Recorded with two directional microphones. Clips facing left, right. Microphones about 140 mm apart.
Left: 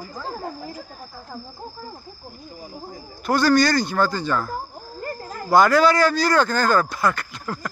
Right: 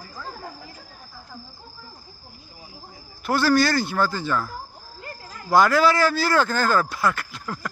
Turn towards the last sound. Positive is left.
turn(degrees=0)  # may be behind; listen again after turning